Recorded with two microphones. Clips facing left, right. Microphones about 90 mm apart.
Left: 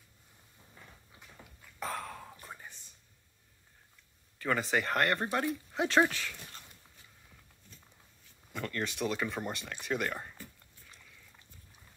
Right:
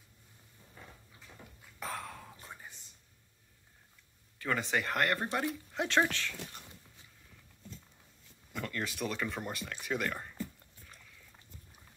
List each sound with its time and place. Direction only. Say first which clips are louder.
1.8 s throat clearing: left 2 dB; centre (ahead or behind)
4.4 s speech: left 2 dB; centre (ahead or behind)
8.5 s speech: left 2 dB; centre (ahead or behind)